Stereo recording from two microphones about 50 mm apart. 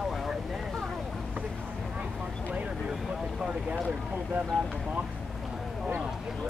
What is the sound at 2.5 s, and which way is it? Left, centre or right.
Vehicle, right.